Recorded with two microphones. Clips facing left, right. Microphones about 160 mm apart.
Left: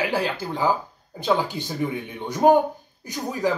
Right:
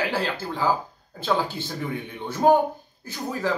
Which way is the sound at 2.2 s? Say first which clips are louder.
Left 2 dB; 15° left (ahead or behind).